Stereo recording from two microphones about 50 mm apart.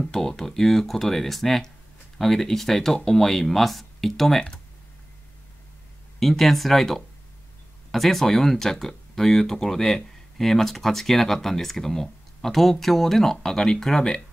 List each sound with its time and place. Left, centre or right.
0.0 s speech: centre
6.1 s speech: centre